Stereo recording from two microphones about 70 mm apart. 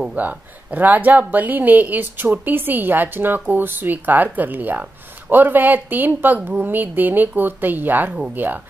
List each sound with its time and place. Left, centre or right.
0.1 s speech: right